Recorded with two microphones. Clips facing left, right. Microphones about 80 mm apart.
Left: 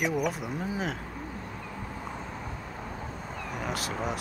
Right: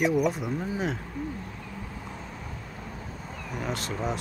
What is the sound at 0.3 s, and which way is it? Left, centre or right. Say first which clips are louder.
Speech: right 2 dB; centre.